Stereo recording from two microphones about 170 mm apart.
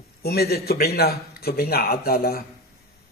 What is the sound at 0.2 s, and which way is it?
A man's voice, 65° left (ahead or behind).